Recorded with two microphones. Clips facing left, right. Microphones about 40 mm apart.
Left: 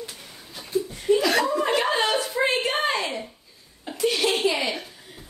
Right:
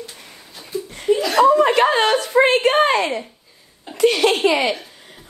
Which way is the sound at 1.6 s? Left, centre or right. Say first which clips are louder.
Right 7 dB; right.